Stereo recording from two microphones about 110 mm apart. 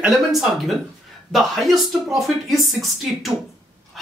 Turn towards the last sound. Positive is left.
turn(degrees=0)  # may be behind; listen again after turning